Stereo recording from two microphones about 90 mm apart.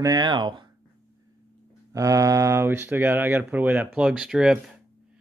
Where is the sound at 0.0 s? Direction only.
45° right (ahead or behind).